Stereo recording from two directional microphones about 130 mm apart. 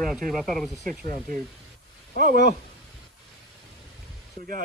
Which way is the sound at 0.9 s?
90° right.